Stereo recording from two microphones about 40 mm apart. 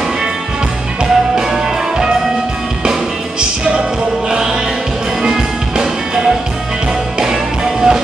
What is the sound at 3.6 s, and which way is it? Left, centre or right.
Music, right.